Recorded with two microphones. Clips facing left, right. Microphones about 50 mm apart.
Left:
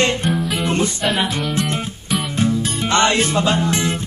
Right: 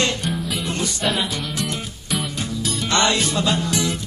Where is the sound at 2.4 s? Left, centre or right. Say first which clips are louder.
Left 6 dB; left.